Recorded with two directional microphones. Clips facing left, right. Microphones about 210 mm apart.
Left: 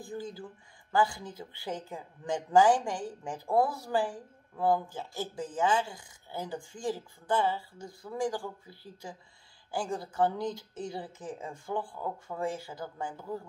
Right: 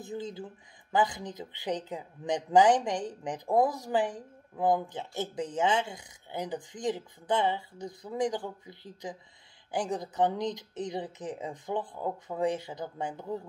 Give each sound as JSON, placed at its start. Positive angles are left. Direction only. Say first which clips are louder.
{"t": 0.0, "sound": "speech", "louder": "right 2 dB", "side_deg": -20}